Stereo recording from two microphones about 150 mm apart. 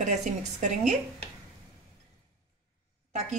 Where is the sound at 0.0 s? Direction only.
55° right (ahead or behind).